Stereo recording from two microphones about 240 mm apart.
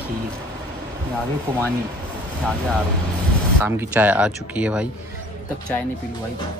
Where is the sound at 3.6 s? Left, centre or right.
Centre.